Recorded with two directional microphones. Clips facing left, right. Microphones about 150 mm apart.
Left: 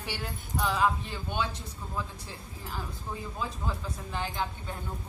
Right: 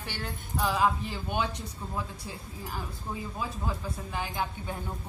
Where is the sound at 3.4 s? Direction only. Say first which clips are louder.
Left 1 dB; 10° right (ahead or behind).